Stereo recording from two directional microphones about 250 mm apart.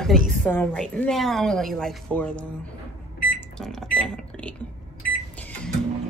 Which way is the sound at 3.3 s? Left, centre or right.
Centre.